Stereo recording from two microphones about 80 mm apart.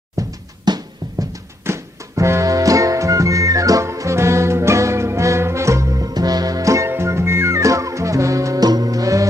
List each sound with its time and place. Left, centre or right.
0.7 s music: right
1.7 s music: right